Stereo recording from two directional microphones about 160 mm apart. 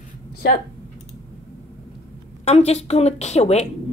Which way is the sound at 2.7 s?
40° left (ahead or behind).